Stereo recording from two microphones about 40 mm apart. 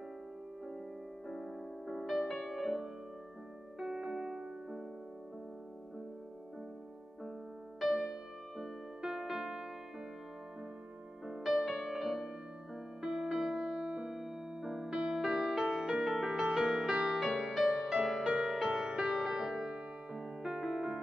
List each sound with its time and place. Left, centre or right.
1.3 s music: centre
3.8 s music: centre
7.8 s music: centre
11.2 s music: centre; by 14.1 s right
14.1 s keyboard: centre
14.9 s music: right; by 15.9 s centre
15.9 s music: centre
17.2 s music: centre
18.2 s music: centre
18.6 s music: centre